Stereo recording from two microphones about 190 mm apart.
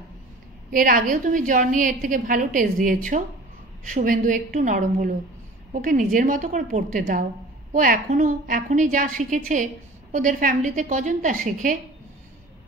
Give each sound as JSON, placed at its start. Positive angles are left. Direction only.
{"t": 0.7, "sound": "a woman's voice", "side_deg": -45}